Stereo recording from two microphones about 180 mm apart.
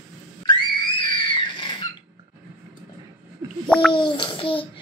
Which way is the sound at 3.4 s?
15° right (ahead or behind).